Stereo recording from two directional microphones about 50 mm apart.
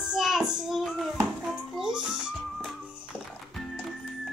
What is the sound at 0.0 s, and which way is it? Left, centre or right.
Child singing, centre.